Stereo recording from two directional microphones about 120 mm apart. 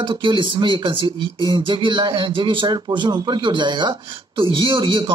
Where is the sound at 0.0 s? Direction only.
45° right (ahead or behind).